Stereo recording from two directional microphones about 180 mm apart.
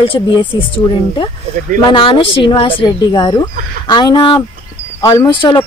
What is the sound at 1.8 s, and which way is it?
Speech, 30° left (ahead or behind).